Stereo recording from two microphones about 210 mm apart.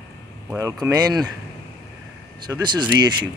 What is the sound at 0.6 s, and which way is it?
Speech, 15° right (ahead or behind).